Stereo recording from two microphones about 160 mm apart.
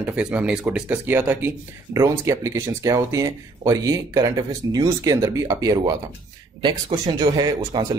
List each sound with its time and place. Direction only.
0.0 s speech: 5° right (ahead or behind); by 5.9 s 25° right (ahead or behind)
7.2 s speech: 25° right (ahead or behind)